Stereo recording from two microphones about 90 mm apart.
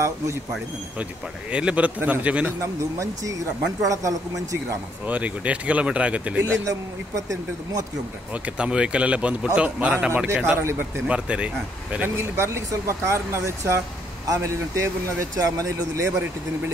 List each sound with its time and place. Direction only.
1.5 s speech: 10° right (ahead or behind)
2.6 s speech: 35° right (ahead or behind)
5.0 s speech: 15° right (ahead or behind)
6.4 s speech: 30° right (ahead or behind)
8.5 s speech: 10° right (ahead or behind)
12.2 s speech: 30° right (ahead or behind)